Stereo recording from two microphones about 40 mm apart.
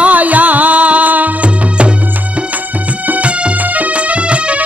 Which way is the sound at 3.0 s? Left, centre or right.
Right.